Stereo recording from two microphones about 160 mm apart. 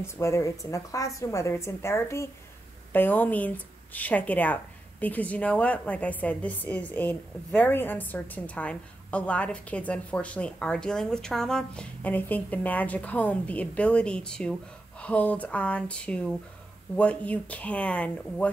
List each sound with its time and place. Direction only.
0.0 s a woman's voice: 15° left (ahead or behind)